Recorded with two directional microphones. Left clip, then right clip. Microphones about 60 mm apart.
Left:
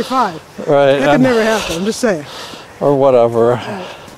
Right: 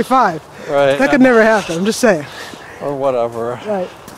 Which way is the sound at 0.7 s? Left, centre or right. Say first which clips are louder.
Left 3 dB; left.